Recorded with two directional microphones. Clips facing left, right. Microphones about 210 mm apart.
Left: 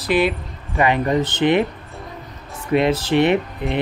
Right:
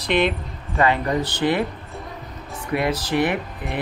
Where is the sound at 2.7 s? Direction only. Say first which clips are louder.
Left 5 dB; 25° left (ahead or behind).